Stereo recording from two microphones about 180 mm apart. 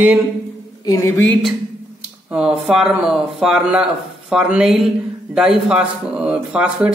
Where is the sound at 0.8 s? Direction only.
20° left (ahead or behind).